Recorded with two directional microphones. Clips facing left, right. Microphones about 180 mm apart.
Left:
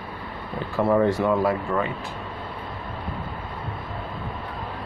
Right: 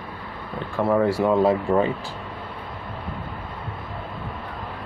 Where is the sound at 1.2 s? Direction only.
25° right (ahead or behind).